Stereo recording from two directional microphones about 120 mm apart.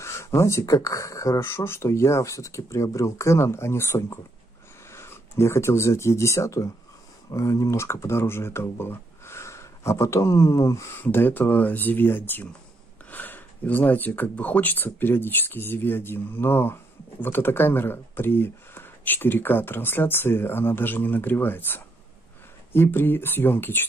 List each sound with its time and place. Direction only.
0.0 s speech: 20° left (ahead or behind)